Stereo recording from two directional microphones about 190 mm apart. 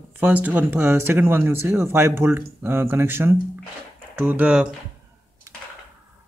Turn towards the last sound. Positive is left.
turn(degrees=-15)  # may be behind; listen again after turning